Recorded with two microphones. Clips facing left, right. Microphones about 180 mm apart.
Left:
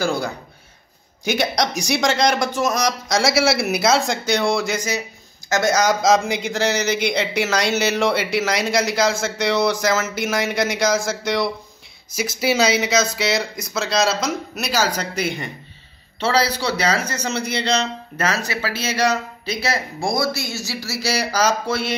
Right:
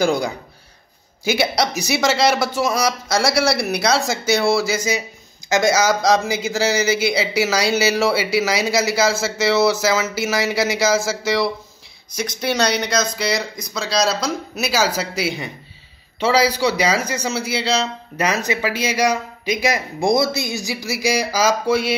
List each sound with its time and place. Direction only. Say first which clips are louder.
0.0 s a man's voice: right 3 dB; 15° right (ahead or behind)